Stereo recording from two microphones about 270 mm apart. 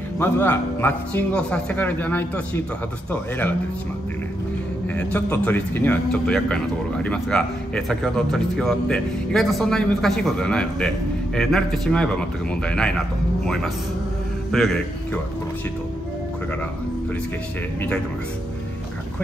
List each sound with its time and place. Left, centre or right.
0.2 s a man's voice: centre
4.8 s speech: centre
14.5 s a man's voice: centre